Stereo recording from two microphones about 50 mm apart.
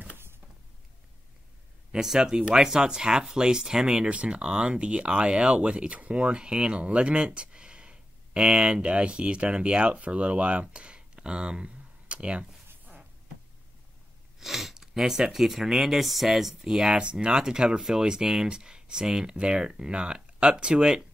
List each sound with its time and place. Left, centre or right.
1.9 s speech: centre
14.4 s speech: centre